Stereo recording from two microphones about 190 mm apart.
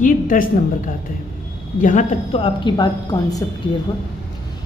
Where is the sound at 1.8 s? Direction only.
40° left (ahead or behind); by 3.5 s 20° left (ahead or behind).